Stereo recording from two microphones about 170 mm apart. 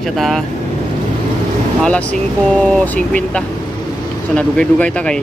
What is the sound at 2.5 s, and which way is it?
Speech, 5° left (ahead or behind).